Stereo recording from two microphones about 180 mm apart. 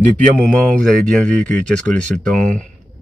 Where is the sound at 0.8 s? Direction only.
5° left (ahead or behind).